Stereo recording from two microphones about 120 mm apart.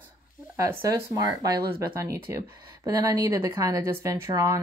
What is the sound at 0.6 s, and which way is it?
Speech, 30° right (ahead or behind).